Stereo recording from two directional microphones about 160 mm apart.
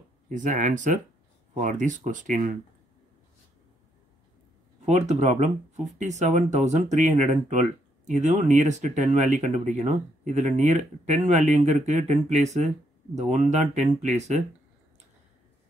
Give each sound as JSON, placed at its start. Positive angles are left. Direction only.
{"t": 0.3, "sound": "speech", "side_deg": -50}
{"t": 4.8, "sound": "speech", "side_deg": -45}